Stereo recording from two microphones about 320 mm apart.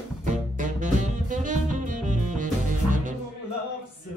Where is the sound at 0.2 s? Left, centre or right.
Right.